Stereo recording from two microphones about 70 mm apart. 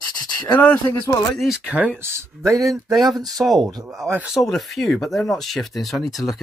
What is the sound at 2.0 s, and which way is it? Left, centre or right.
Speech, right.